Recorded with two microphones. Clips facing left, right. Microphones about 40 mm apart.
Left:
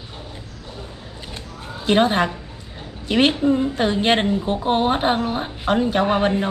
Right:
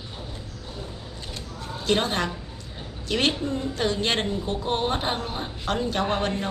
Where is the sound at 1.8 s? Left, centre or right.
Left.